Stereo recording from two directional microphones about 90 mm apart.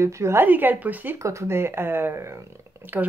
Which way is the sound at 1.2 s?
35° right (ahead or behind).